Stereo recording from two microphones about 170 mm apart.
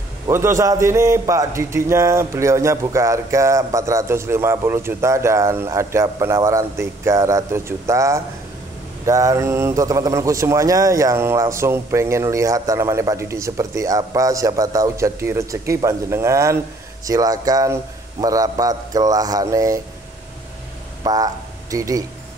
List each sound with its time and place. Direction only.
0.3 s a man's voice: 15° right (ahead or behind)
21.0 s speech: 20° right (ahead or behind)